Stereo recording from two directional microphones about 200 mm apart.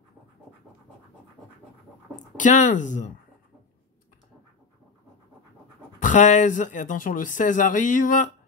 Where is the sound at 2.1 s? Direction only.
40° left (ahead or behind).